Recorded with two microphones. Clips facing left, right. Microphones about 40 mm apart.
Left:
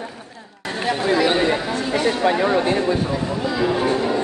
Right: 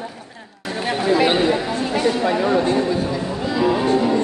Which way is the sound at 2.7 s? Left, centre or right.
Left.